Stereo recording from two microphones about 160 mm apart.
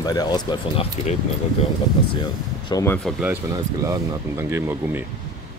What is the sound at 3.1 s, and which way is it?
Speech, centre (ahead or behind).